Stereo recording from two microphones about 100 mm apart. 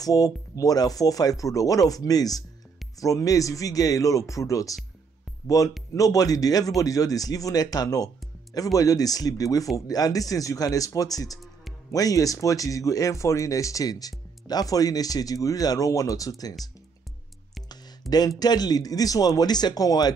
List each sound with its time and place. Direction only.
0.0 s speech: 35° left (ahead or behind)
18.0 s speech: centre (ahead or behind)
18.4 s speech: 40° left (ahead or behind)